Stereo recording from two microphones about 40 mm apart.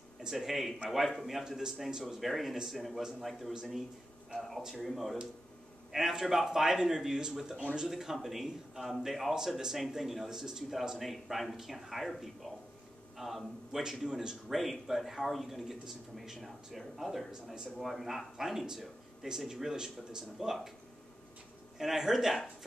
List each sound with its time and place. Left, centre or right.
0.2 s speech: centre
1.4 s a man's voice: centre
2.2 s a man's voice: centre
9.3 s a man's voice: centre
13.7 s a man's voice: centre
14.5 s a man's voice: centre
19.2 s a man's voice: centre
21.7 s a man's voice: centre